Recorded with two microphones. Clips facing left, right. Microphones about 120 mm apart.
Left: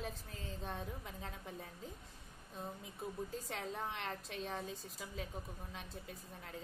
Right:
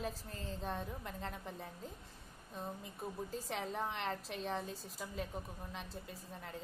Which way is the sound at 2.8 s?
Centre (ahead or behind).